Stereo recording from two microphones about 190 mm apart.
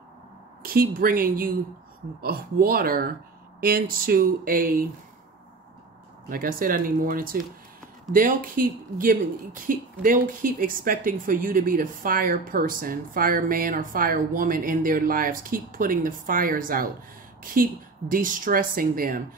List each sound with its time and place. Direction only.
0.6 s speech: 50° right (ahead or behind)
6.2 s speech: 50° right (ahead or behind)